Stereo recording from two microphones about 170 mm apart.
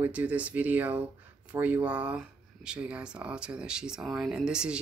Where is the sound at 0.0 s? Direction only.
10° right (ahead or behind).